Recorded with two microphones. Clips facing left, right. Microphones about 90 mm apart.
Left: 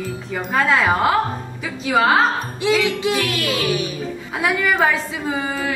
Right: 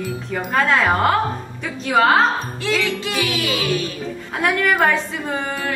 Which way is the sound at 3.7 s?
15° left (ahead or behind).